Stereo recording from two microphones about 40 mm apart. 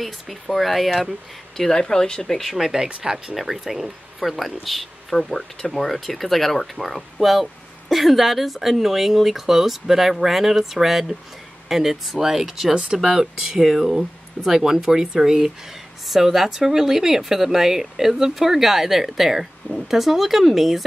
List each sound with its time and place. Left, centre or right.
0.0 s speech: centre
1.6 s speech: centre
2.4 s speech: centre
3.3 s speech: centre
12.7 s speech: centre
13.9 s speech: centre